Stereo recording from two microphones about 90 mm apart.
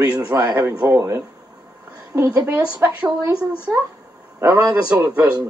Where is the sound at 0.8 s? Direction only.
30° right (ahead or behind).